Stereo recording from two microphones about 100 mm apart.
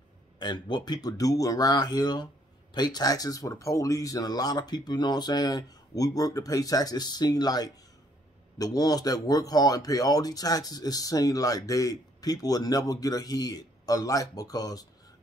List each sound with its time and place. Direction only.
0.4 s speech: 50° left (ahead or behind)